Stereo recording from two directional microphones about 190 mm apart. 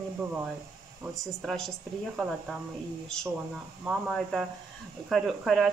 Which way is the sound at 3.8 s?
Centre (ahead or behind).